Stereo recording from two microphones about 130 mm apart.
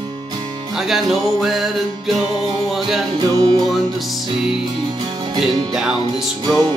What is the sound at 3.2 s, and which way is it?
Music, 30° right (ahead or behind).